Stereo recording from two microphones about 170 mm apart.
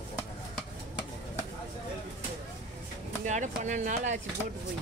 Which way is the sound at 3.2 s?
45° right (ahead or behind).